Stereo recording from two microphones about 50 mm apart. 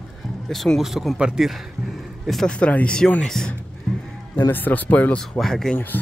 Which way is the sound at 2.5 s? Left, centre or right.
Left.